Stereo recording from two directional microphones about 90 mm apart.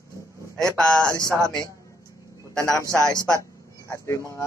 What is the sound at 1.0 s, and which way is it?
Speech, 35° right (ahead or behind).